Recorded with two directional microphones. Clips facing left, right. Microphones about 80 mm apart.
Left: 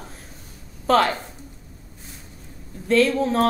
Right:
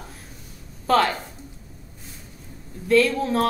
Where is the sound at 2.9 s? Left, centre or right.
Left.